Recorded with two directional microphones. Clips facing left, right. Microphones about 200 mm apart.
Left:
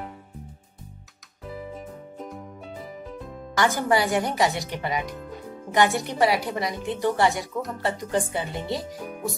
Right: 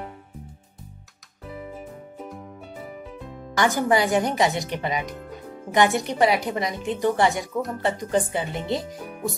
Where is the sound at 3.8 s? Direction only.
20° right (ahead or behind).